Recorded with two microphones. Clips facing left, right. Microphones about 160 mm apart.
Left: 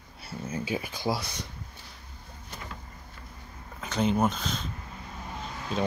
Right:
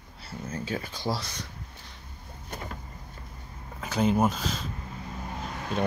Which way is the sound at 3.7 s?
5° right (ahead or behind).